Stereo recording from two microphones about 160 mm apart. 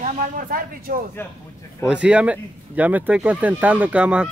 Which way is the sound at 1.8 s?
5° right (ahead or behind).